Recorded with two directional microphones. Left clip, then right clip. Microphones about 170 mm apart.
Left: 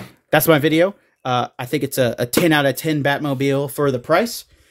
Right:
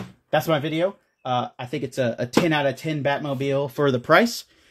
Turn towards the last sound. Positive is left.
turn(degrees=0)  # may be behind; listen again after turning